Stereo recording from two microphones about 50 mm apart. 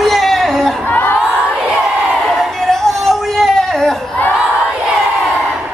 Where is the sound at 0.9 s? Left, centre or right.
Left.